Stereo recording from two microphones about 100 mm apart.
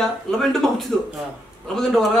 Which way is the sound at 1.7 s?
5° left (ahead or behind).